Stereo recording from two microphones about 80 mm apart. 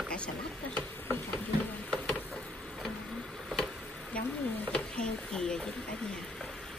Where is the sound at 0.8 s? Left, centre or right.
Centre.